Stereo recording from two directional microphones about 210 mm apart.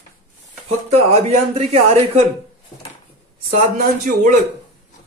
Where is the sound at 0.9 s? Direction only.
30° right (ahead or behind).